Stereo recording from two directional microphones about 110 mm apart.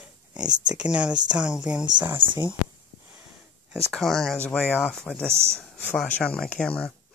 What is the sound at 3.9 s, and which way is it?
Speech, 5° left (ahead or behind).